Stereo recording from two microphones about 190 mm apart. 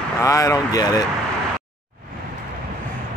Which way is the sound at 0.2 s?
15° left (ahead or behind).